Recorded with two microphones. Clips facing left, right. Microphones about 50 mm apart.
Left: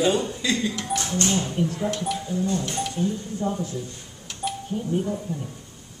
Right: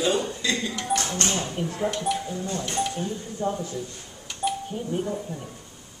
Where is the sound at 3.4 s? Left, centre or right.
Centre.